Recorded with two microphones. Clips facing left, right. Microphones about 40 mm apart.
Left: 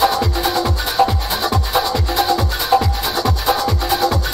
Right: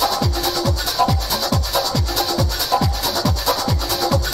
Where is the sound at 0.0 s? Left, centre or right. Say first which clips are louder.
Left 4 dB; left.